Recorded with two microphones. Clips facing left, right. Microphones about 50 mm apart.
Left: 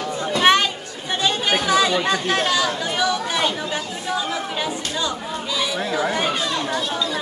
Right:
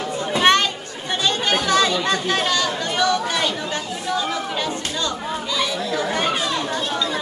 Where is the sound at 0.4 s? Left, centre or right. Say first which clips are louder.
Even; centre.